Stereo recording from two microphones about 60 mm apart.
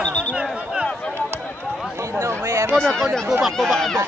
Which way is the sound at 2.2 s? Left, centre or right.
Right.